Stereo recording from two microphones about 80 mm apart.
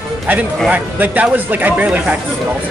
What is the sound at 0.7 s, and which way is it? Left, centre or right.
Speech, right.